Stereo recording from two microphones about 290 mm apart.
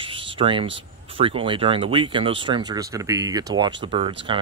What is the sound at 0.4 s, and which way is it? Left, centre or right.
Speech, centre.